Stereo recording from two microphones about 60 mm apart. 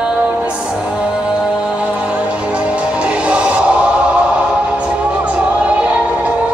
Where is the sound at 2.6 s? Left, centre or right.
Centre.